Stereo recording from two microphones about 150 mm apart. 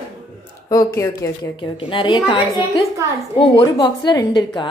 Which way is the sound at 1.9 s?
35° left (ahead or behind).